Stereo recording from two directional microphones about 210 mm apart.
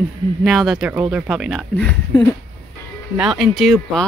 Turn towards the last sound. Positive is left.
turn(degrees=0)  # may be behind; listen again after turning